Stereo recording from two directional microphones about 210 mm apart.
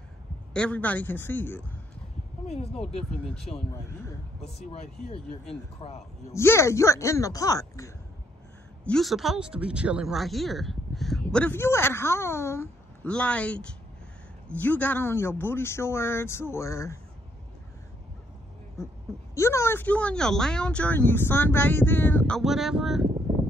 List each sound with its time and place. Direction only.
0.5 s speech: 5° left (ahead or behind)
2.4 s speech: 30° left (ahead or behind)
3.1 s speech: 5° left (ahead or behind)
4.7 s speech: 30° left (ahead or behind)
6.3 s speech: 15° left (ahead or behind)
8.8 s speech: centre (ahead or behind)
19.3 s speech: 15° left (ahead or behind)